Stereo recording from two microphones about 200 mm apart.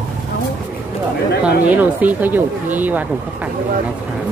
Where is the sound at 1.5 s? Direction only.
10° right (ahead or behind).